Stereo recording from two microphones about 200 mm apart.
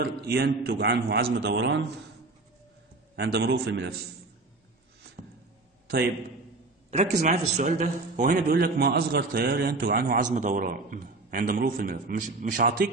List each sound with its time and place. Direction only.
0.0 s a man's voice: 50° right (ahead or behind)
3.2 s a man's voice: 55° right (ahead or behind)
6.9 s a man's voice: 35° right (ahead or behind)